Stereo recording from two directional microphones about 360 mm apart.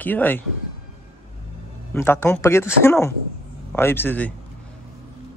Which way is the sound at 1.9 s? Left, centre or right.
Centre.